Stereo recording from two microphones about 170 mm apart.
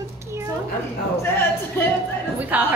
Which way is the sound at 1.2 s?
15° left (ahead or behind).